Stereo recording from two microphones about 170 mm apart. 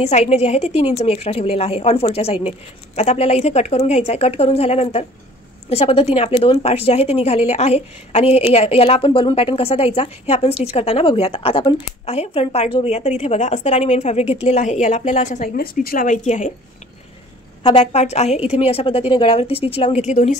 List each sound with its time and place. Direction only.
0.0 s a woman's voice: 40° left (ahead or behind)
15.5 s speech: 60° left (ahead or behind); by 16.5 s 45° left (ahead or behind)
17.6 s a woman's voice: 40° left (ahead or behind)